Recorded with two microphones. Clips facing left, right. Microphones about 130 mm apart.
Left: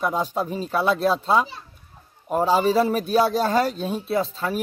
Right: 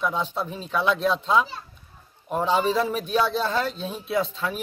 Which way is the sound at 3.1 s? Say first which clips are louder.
Left 3 dB; 40° left (ahead or behind).